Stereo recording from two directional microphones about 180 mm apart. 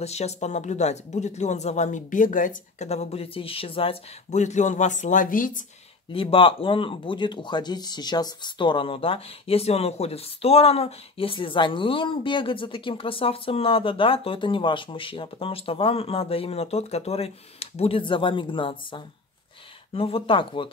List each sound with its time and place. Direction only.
0.0 s speech: 35° left (ahead or behind)
6.1 s speech: 30° left (ahead or behind)